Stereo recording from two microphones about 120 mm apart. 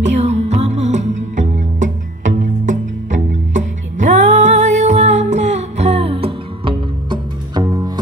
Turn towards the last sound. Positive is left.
turn(degrees=-35)  # may be behind; listen again after turning